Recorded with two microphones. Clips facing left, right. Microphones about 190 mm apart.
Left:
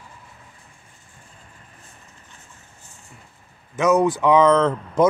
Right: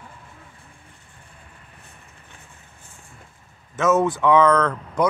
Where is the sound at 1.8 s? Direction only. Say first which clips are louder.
Even; 60° right (ahead or behind).